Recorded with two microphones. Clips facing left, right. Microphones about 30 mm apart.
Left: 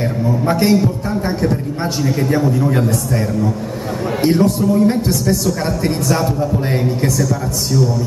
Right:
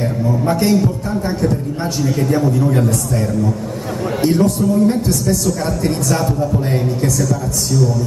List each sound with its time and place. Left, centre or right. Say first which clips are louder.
0.5 s a woman's voice: left 1 dB; left
4.4 s a woman's voice: even; left